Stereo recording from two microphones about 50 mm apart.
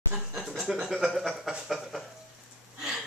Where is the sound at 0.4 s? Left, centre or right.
Centre.